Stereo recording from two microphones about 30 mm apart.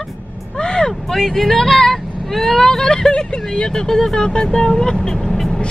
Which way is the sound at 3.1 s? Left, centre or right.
Left.